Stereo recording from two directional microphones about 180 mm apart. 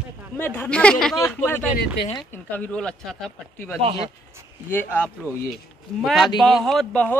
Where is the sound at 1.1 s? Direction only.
15° left (ahead or behind).